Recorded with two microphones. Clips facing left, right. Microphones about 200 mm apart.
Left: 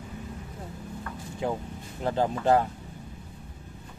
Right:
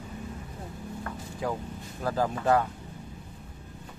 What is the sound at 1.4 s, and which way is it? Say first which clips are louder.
Speech: left 2 dB; 25° left (ahead or behind).